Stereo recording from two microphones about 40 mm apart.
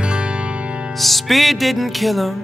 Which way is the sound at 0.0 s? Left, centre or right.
Right.